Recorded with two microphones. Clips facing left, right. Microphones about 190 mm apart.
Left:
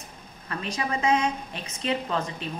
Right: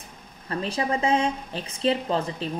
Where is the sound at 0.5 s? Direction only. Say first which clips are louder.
Right 4 dB; 30° right (ahead or behind).